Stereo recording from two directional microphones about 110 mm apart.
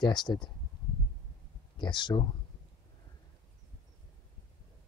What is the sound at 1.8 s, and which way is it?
Speech, 45° left (ahead or behind).